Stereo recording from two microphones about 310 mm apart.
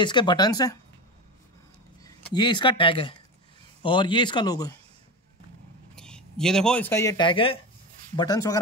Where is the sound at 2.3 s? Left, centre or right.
Centre.